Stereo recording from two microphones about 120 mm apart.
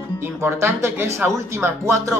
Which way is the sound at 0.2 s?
20° right (ahead or behind).